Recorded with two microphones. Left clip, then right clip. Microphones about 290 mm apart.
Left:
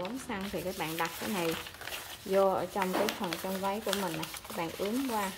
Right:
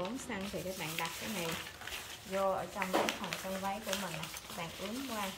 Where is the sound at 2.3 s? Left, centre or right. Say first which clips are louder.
Left 7 dB; centre.